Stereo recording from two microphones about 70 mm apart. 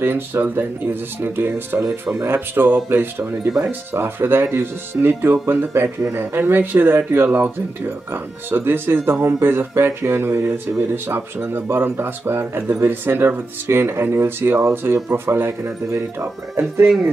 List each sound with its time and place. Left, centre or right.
0.0 s speech: right
15.6 s speech: right